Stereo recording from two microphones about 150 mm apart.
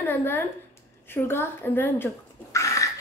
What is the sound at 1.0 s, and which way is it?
Dog, 15° left (ahead or behind).